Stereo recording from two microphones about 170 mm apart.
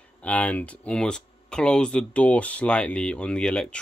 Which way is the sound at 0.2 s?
10° left (ahead or behind).